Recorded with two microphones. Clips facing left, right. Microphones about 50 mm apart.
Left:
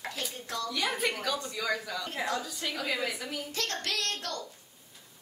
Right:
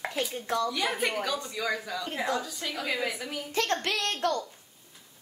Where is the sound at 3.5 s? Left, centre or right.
Right.